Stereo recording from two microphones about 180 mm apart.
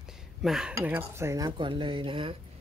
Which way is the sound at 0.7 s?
10° right (ahead or behind).